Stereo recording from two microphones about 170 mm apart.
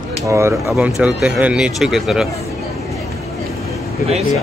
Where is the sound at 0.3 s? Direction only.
15° right (ahead or behind).